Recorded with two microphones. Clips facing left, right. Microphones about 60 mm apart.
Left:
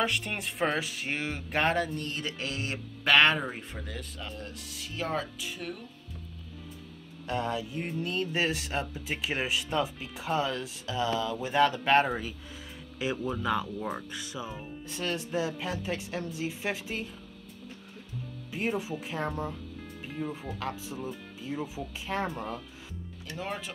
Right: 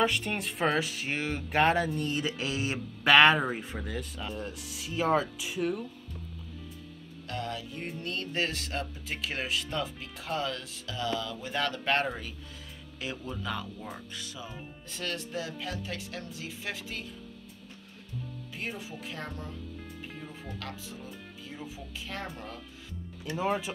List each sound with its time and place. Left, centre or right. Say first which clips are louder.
0.0 s speech: right 2 dB; centre
7.2 s speech: left 5 dB; centre
7.8 s speech: left 3 dB; centre
18.5 s speech: left 8 dB; centre
20.5 s speech: left 5 dB; centre
23.3 s speech: right 6 dB; centre